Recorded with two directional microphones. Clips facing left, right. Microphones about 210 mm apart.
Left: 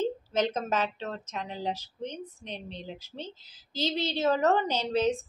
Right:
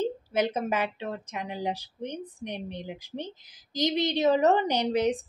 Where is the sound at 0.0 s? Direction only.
10° right (ahead or behind).